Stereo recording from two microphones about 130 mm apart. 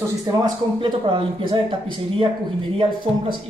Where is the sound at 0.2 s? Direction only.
30° right (ahead or behind).